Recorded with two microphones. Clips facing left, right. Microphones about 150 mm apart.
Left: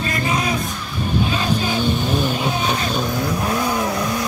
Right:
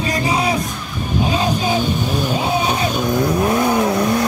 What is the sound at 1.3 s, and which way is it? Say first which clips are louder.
Vehicle: right 3 dB; 15° right (ahead or behind).